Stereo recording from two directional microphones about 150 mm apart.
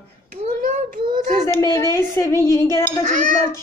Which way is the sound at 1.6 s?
25° left (ahead or behind).